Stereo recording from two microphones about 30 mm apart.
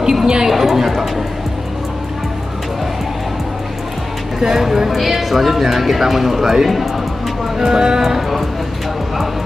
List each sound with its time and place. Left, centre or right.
0.1 s chatter: right
0.5 s a sound: centre
4.4 s speech: centre